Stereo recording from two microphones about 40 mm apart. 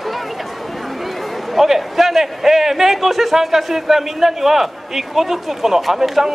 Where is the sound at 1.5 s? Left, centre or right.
Centre.